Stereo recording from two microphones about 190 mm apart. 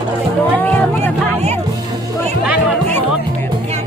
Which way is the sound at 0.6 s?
10° left (ahead or behind).